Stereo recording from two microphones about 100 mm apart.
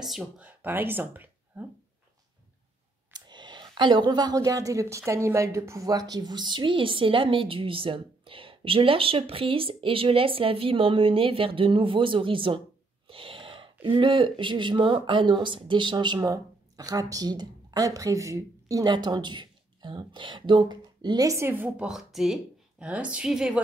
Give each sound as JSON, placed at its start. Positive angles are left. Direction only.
{"t": 0.4, "sound": "speech", "side_deg": -15}
{"t": 3.1, "sound": "a sound", "side_deg": -50}
{"t": 4.4, "sound": "speech", "side_deg": -35}
{"t": 16.2, "sound": "speech", "side_deg": -35}
{"t": 21.5, "sound": "a woman's voice", "side_deg": -20}
{"t": 21.8, "sound": "a woman's voice", "side_deg": -5}